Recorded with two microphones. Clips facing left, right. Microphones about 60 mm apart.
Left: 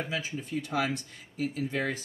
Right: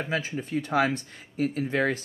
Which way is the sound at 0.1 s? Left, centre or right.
Right.